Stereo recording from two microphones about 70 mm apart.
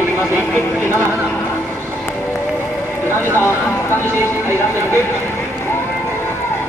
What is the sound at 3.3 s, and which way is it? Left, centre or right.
Vehicle, left.